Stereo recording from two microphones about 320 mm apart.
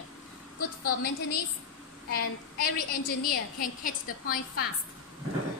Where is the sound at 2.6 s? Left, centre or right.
Left.